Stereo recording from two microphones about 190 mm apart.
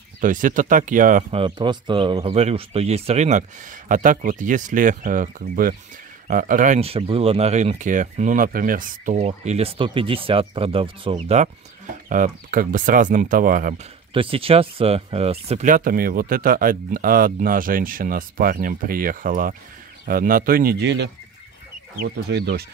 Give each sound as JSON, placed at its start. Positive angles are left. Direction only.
{"t": 0.2, "sound": "speech", "side_deg": -45}
{"t": 1.3, "sound": "speech", "side_deg": -25}
{"t": 14.1, "sound": "speech", "side_deg": -30}